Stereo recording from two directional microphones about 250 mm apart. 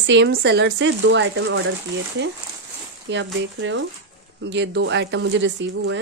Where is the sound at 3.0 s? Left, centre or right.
Right.